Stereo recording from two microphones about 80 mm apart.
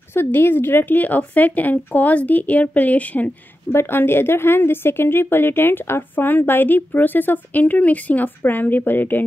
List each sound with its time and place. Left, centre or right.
0.1 s a woman's voice: left